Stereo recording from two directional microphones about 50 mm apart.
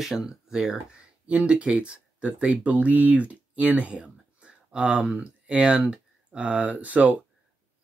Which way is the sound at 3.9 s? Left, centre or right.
Centre.